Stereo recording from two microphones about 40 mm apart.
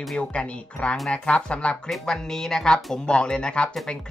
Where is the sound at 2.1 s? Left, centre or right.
Centre.